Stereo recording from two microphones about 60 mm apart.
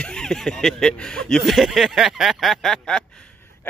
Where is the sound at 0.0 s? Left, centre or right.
Centre.